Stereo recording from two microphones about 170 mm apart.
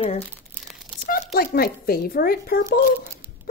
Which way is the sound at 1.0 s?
60° left (ahead or behind).